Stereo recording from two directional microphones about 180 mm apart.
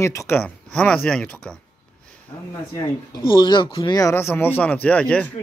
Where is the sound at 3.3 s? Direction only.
25° left (ahead or behind); by 5.2 s 5° left (ahead or behind).